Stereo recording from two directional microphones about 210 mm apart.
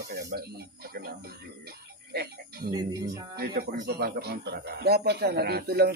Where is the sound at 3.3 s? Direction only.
50° right (ahead or behind).